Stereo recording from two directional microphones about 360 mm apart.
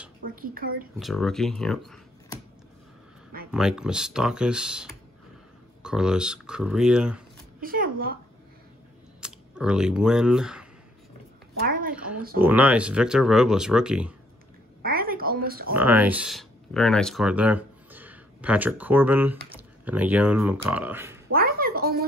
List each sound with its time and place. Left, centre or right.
0.2 s speech: right
0.9 s speech: centre
3.5 s speech: centre
7.6 s speech: right
9.2 s speech: centre
11.6 s a sound: right
12.4 s speech: centre
14.8 s oink: right
15.7 s speech: centre
21.3 s a sound: right